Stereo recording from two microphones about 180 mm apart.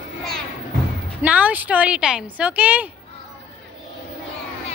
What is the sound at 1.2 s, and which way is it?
A woman's voice, 10° right (ahead or behind).